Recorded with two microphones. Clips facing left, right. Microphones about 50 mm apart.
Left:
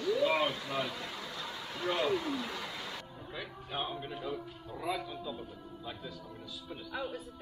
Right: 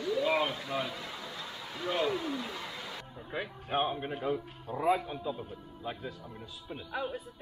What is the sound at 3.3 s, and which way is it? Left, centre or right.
A woman's voice, right.